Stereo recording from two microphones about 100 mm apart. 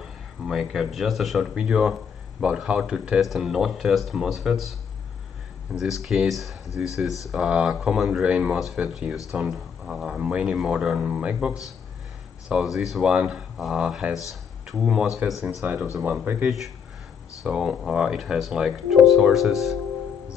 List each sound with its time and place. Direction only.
0.0 s speech: 5° right (ahead or behind)
5.8 s speech: centre (ahead or behind)
15.6 s speech: 15° right (ahead or behind)
16.4 s speech: centre (ahead or behind)